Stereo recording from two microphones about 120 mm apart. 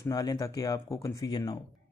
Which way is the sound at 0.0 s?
30° left (ahead or behind).